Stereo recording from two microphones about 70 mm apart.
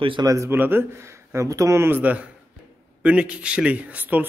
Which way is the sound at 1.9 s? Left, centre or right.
Right.